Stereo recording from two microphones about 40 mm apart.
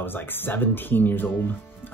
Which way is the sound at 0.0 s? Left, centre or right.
Left.